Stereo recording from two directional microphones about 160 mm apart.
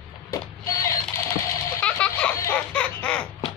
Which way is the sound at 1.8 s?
10° left (ahead or behind).